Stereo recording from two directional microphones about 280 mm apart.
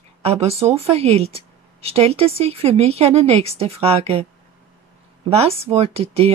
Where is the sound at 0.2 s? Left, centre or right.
Right.